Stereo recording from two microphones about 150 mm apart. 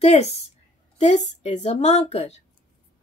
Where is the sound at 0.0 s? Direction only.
45° left (ahead or behind).